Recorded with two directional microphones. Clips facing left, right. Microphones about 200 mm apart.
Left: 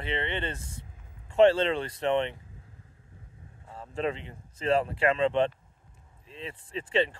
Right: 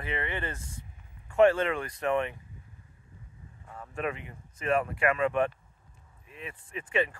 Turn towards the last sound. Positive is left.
turn(degrees=30)  # may be behind; listen again after turning